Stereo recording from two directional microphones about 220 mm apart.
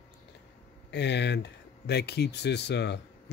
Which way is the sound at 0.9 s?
50° left (ahead or behind).